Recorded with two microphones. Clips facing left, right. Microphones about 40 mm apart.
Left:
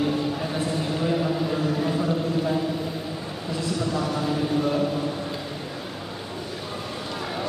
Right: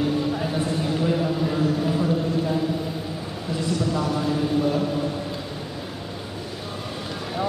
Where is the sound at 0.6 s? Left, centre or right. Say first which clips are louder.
Right 2 dB; centre.